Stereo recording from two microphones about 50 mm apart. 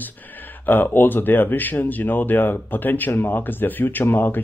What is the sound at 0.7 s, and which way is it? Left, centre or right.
Speech, left.